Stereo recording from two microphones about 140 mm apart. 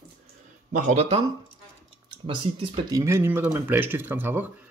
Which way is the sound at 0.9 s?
45° right (ahead or behind).